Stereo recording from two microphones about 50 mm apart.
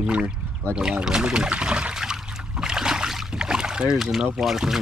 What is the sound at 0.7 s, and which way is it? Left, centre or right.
Trickle, centre.